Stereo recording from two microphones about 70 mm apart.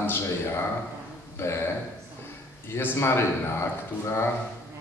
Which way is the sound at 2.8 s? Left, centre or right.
Left.